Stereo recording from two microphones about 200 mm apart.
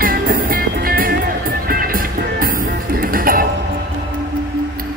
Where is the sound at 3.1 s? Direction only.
45° right (ahead or behind).